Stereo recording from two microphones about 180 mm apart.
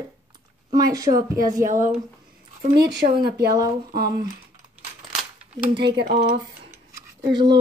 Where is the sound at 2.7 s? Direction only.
65° right (ahead or behind).